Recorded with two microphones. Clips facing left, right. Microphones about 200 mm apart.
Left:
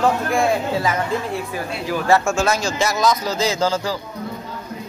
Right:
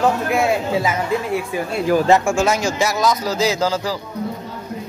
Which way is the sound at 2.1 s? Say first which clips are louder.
Right 2 dB; 15° right (ahead or behind).